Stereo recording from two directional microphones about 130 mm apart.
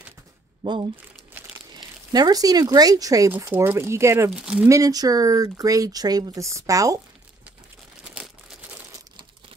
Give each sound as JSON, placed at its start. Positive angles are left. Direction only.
{"t": 0.6, "sound": "speech", "side_deg": -35}
{"t": 4.3, "sound": "speech", "side_deg": -5}
{"t": 4.6, "sound": "speech", "side_deg": -25}
{"t": 8.0, "sound": "crumpling", "side_deg": -5}